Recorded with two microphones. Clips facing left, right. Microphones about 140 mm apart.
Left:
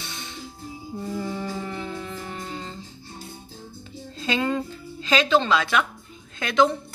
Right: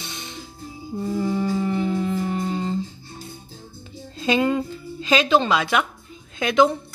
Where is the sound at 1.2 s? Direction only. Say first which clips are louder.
Right 7 dB; 15° right (ahead or behind).